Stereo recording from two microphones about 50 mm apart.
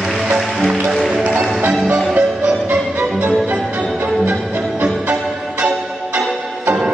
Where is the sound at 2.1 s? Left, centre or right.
Right.